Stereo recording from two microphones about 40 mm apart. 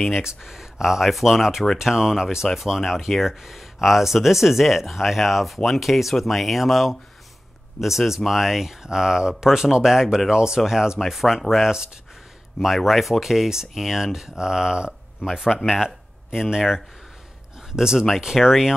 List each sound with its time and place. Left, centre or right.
0.1 s speech: centre
11.0 s speech: centre